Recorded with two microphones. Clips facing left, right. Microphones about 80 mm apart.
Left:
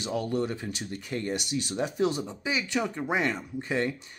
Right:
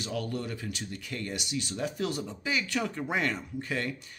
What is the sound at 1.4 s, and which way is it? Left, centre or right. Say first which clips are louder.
Speech: left 3 dB; left.